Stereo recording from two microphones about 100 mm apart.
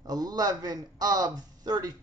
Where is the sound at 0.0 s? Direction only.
40° right (ahead or behind).